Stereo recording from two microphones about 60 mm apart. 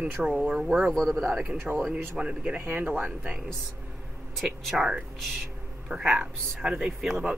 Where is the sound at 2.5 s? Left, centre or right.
Right.